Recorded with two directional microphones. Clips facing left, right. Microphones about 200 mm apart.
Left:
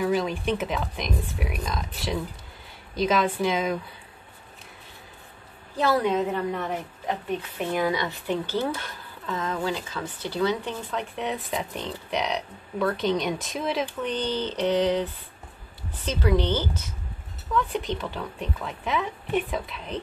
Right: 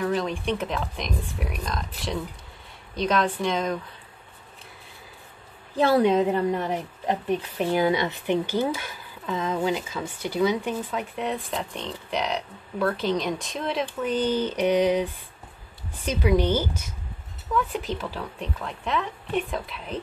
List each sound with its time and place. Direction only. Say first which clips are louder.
0.0 s a woman's voice: left 1 dB; 5° left (ahead or behind)
5.8 s a woman's voice: right 4 dB; 30° right (ahead or behind)
7.7 s speech: right 3 dB; 25° right (ahead or behind)
8.5 s speech: right 2 dB; 10° right (ahead or behind)
16.1 s a woman's voice: right 2 dB; 10° right (ahead or behind)